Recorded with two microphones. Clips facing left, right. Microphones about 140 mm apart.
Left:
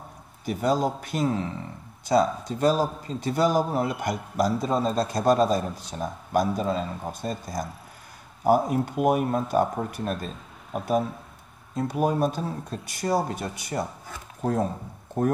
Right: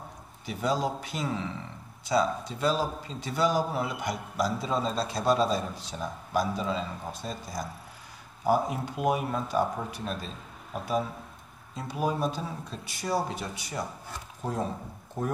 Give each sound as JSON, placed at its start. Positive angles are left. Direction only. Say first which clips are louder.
{"t": 0.5, "sound": "a man's voice", "louder": "left 5 dB", "side_deg": 50}
{"t": 15.2, "sound": "a man's voice", "louder": "left 8 dB", "side_deg": 55}